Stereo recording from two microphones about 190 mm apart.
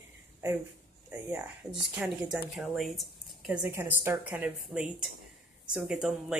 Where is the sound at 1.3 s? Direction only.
5° right (ahead or behind).